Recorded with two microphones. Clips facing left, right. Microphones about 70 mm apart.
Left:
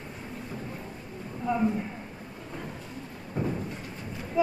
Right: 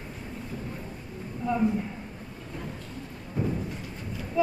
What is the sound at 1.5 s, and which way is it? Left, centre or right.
Speech, centre.